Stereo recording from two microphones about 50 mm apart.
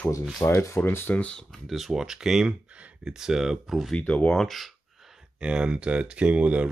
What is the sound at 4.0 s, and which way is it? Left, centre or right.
Speech, left.